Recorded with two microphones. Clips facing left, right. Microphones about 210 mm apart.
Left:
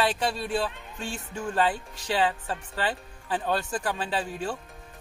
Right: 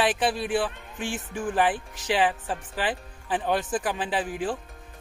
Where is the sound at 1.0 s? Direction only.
90° right.